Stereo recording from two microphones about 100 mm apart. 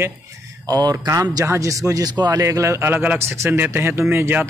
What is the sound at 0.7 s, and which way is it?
Speech, 35° right (ahead or behind).